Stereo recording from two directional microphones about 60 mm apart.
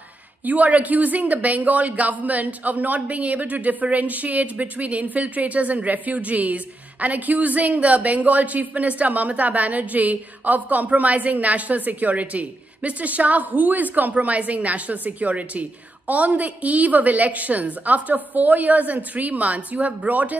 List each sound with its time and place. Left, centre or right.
0.5 s speech: right